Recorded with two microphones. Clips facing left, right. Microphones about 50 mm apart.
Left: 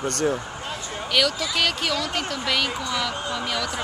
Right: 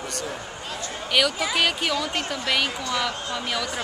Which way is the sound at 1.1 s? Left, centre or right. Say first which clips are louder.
Right 1 dB; centre.